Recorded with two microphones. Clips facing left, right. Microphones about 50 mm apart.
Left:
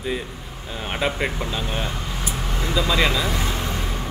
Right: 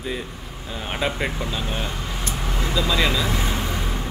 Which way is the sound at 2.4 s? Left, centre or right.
Centre.